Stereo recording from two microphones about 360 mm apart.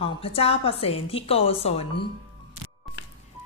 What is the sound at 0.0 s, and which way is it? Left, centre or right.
A woman's voice, centre.